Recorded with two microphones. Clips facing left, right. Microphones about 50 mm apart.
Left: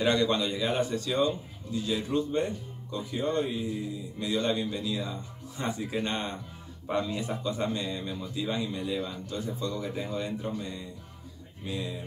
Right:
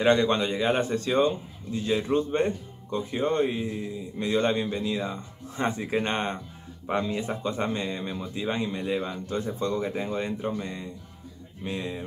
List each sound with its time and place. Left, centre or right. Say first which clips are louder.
0.0 s a man's voice: right 4 dB; right